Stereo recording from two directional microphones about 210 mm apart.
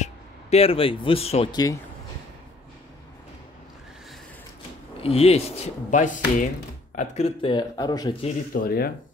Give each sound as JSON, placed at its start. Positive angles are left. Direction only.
{"t": 0.0, "sound": "speech", "side_deg": 30}
{"t": 5.0, "sound": "speech", "side_deg": 30}
{"t": 8.5, "sound": "speech", "side_deg": 45}